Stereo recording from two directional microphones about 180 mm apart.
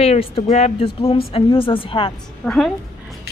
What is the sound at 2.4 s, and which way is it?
Speech, centre (ahead or behind).